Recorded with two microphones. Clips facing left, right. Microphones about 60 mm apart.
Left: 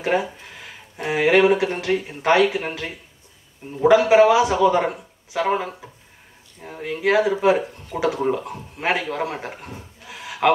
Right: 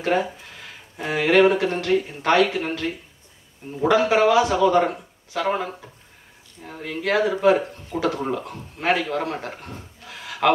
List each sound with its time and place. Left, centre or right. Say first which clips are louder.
0.0 s a man's voice: even; centre